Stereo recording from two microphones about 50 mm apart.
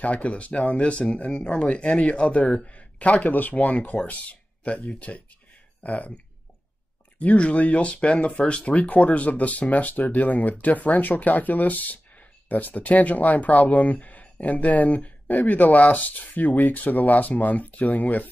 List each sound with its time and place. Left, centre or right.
0.0 s speech: left